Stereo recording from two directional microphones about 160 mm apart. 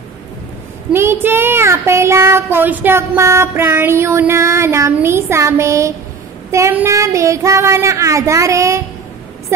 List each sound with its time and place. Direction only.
0.9 s child singing: 15° right (ahead or behind)